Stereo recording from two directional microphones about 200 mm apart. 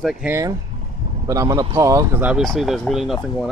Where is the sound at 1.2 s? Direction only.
15° right (ahead or behind); by 3.2 s centre (ahead or behind).